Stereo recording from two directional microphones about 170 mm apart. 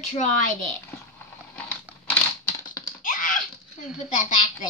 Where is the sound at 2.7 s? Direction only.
55° left (ahead or behind).